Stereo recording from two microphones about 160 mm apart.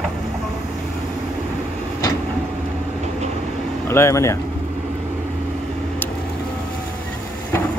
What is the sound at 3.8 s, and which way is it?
Speech, 15° left (ahead or behind).